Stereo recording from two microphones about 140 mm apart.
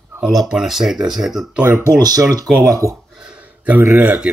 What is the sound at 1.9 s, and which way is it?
Speech, 25° right (ahead or behind).